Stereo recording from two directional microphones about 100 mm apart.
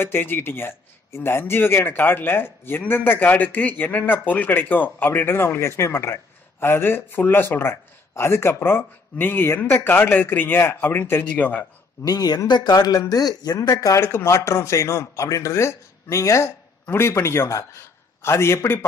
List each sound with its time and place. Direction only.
0.0 s a man's voice: 20° left (ahead or behind)
12.0 s speech: 40° left (ahead or behind)
13.7 s a man's voice: 30° left (ahead or behind)